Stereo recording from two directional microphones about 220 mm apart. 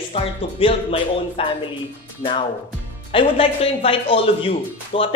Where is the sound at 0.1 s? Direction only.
25° left (ahead or behind).